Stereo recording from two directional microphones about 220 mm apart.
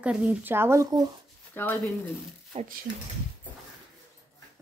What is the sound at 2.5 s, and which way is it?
Speech, 25° right (ahead or behind).